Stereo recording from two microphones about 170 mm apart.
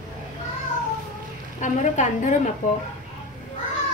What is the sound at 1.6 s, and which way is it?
Speech, 45° left (ahead or behind).